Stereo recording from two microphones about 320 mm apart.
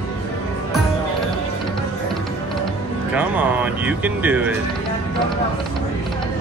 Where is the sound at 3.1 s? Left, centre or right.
Centre.